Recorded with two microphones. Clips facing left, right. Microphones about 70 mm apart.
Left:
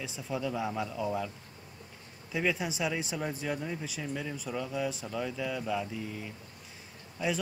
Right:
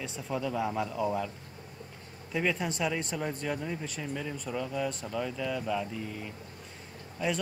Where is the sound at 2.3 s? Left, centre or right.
Centre.